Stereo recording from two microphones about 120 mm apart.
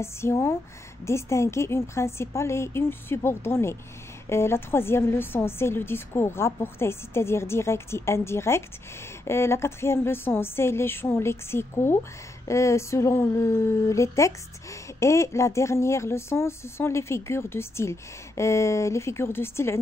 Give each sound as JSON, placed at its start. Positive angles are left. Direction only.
{"t": 0.0, "sound": "speech", "side_deg": 20}